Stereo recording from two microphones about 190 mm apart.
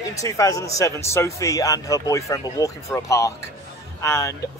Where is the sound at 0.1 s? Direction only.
15° left (ahead or behind).